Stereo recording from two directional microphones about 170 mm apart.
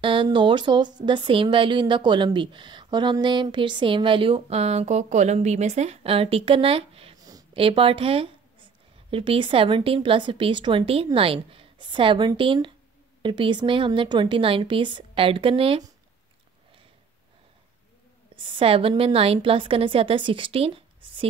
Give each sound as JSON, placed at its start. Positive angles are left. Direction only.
{"t": 0.0, "sound": "a woman's voice", "side_deg": -30}
{"t": 18.3, "sound": "a woman's voice", "side_deg": -30}